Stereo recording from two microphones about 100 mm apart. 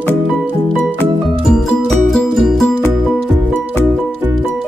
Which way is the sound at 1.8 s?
Centre (ahead or behind).